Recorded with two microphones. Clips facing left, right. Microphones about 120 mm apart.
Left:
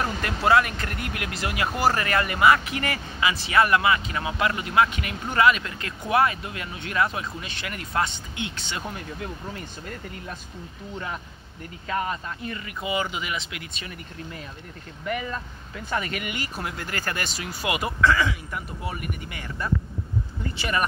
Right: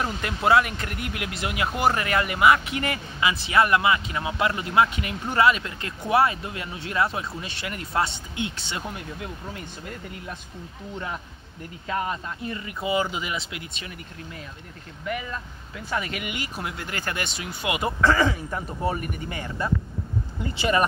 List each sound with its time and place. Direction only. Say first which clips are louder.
0.2 s speech: even; 20° right (ahead or behind)
8.8 s speech: left 1 dB; 10° right (ahead or behind)
11.9 s speech: even; 20° right (ahead or behind)
15.0 s speech: left 1 dB; 5° right (ahead or behind); by 17.9 s 20° right (ahead or behind)
18.0 s speech: right 1 dB; 35° right (ahead or behind)